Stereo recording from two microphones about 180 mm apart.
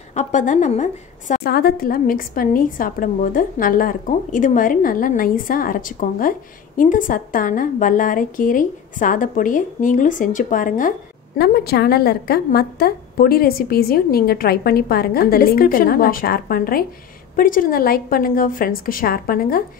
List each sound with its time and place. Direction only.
0.1 s a woman's voice: 40° left (ahead or behind)
1.4 s a woman's voice: 60° left (ahead or behind)